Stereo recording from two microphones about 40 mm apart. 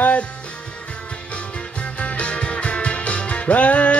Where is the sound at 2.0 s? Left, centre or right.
Left.